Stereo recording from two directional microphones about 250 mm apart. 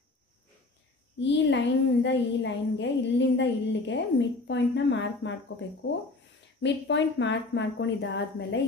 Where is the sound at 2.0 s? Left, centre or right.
Left.